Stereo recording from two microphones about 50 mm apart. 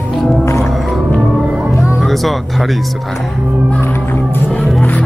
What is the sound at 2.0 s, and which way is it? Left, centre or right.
Music, centre.